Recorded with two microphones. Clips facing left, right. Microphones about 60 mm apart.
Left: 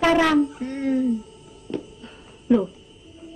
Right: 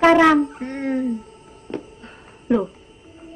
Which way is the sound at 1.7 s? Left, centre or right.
Right.